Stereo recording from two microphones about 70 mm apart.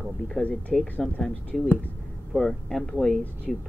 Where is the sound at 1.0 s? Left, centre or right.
Centre.